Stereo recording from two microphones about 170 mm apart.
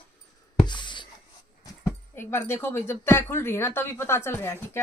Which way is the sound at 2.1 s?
15° left (ahead or behind).